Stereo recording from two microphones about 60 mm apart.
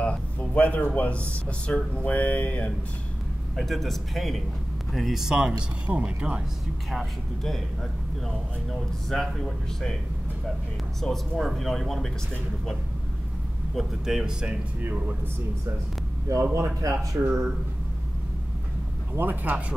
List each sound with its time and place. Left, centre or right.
0.0 s speech: left
3.5 s speech: centre
5.6 s speech: right
6.9 s speech: centre
9.1 s speech: centre
11.0 s speech: centre
13.7 s speech: centre
14.8 s speech: right
16.3 s a man's voice: right
19.1 s speech: right